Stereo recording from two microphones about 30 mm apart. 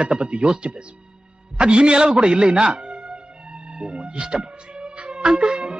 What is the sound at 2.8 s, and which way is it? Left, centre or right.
Music, right.